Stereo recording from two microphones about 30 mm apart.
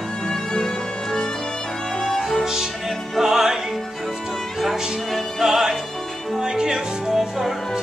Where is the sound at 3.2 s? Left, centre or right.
Centre.